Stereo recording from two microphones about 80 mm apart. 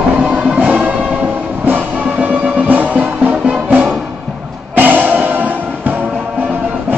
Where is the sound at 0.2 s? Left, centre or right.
Centre.